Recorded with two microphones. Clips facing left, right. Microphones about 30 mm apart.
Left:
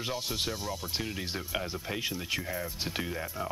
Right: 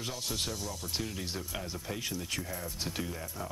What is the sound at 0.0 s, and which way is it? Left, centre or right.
Speech, left.